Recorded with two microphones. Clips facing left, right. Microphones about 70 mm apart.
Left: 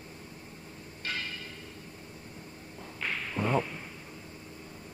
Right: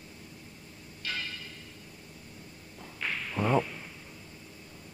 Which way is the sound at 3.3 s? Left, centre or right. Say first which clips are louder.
Right 2 dB; centre.